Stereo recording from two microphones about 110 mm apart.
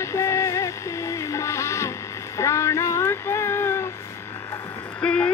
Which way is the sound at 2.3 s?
25° left (ahead or behind).